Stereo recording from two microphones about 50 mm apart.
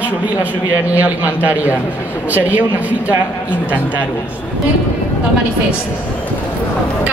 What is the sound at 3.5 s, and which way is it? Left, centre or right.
Speech, left.